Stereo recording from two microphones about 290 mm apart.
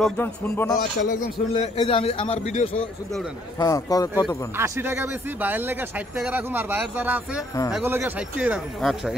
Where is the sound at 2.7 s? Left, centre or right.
Centre.